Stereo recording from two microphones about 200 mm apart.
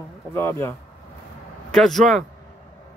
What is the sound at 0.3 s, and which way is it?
Speech, 10° left (ahead or behind).